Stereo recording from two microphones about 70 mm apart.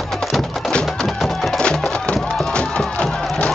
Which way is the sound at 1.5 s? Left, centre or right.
Centre.